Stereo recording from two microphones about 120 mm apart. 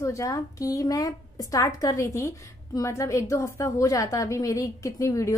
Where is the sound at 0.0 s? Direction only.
25° left (ahead or behind).